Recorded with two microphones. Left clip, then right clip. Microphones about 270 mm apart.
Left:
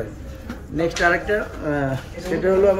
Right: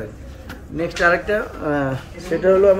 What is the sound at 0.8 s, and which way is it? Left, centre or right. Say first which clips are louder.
Speech: right 2 dB; centre.